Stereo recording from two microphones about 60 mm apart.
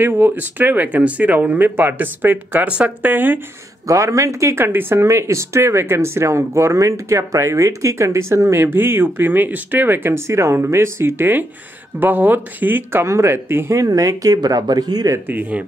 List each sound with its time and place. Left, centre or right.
0.0 s speech: right
3.8 s speech: right
4.6 s speech: right
5.0 s speech: right
8.7 s speech: right
13.0 s speech: right
13.7 s speech: right
15.2 s speech: right